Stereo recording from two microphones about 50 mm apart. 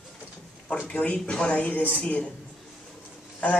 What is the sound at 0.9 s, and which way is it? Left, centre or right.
Speech, left.